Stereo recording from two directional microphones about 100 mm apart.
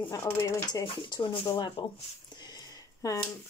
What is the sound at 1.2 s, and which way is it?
Speech, 55° left (ahead or behind).